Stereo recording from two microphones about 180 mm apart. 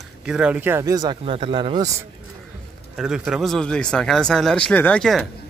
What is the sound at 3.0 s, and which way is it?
Speech, centre (ahead or behind).